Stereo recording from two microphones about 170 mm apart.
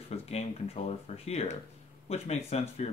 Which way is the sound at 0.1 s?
40° left (ahead or behind).